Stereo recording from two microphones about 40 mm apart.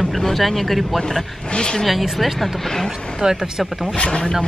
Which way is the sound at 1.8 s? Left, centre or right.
Centre.